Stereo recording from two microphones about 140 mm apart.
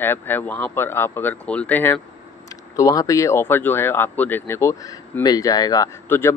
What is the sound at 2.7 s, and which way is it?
Speech, 25° left (ahead or behind).